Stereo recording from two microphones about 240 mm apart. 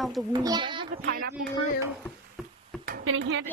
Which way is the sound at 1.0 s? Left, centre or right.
Right.